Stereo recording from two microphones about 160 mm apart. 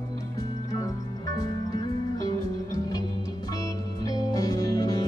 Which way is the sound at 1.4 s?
20° left (ahead or behind).